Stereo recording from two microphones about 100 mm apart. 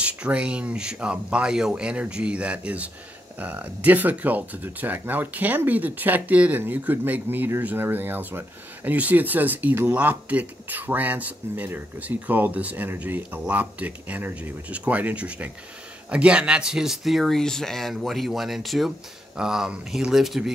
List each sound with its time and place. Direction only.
0.0 s speech: 10° right (ahead or behind)